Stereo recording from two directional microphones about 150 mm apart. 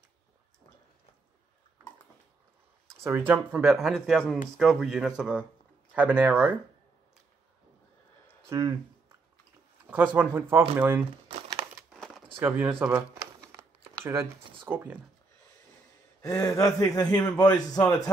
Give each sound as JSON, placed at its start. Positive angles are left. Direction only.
{"t": 2.9, "sound": "speech", "side_deg": -15}
{"t": 8.5, "sound": "speech", "side_deg": -20}
{"t": 9.8, "sound": "speech", "side_deg": -10}
{"t": 11.9, "sound": "a sound", "side_deg": 0}
{"t": 12.4, "sound": "speech", "side_deg": -10}
{"t": 16.2, "sound": "a sound", "side_deg": 20}
{"t": 16.5, "sound": "a man's voice", "side_deg": 20}